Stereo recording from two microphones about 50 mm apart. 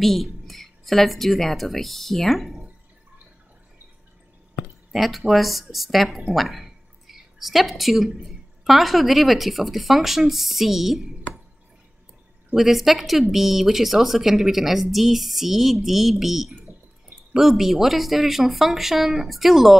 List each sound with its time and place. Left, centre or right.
0.0 s speech: centre
4.9 s speech: centre
12.5 s speech: centre